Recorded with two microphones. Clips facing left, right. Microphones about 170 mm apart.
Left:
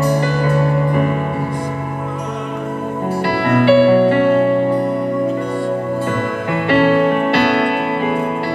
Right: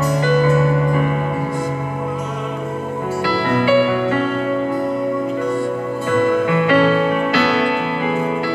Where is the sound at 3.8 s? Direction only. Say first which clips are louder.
Left 6 dB; 30° left (ahead or behind).